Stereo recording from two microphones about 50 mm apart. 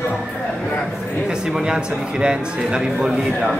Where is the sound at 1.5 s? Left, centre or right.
Centre.